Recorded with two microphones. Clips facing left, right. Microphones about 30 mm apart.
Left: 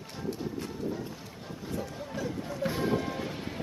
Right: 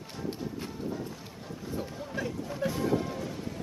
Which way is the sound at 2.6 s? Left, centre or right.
Left.